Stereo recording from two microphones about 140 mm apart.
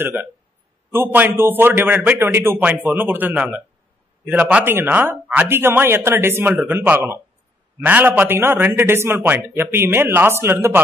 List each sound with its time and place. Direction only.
0.0 s speech: 15° right (ahead or behind)